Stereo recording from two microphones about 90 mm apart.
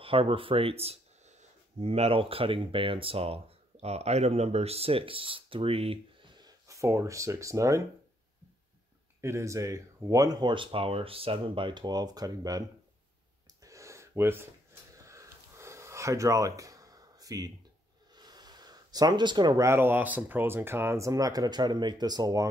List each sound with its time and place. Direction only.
0.0 s speech: 90° right; by 6.5 s 60° right (ahead or behind)
6.7 s speech: 35° right (ahead or behind)
9.2 s speech: 35° right (ahead or behind)
10.4 s speech: 70° right (ahead or behind); by 12.6 s 45° right (ahead or behind)
13.7 s gasp: 35° right (ahead or behind)
15.0 s a sound: 35° right (ahead or behind)
18.1 s gasp: 50° right (ahead or behind)
19.6 s speech: 25° right (ahead or behind); by 22.5 s 45° right (ahead or behind)